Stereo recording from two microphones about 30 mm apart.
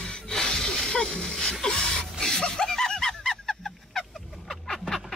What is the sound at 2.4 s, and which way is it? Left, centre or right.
Snicker, left.